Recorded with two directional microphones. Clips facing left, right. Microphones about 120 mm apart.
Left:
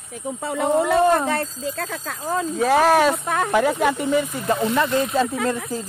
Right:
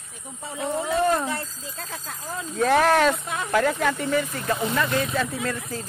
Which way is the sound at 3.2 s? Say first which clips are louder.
Left 8 dB; 60° left (ahead or behind).